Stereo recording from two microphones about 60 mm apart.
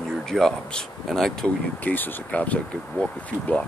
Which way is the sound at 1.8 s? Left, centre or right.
Left.